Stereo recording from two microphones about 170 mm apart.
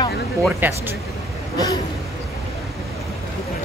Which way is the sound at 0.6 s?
10° right (ahead or behind).